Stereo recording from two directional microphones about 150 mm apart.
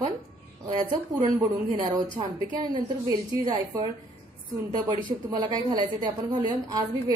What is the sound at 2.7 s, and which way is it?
A woman's voice, 25° right (ahead or behind).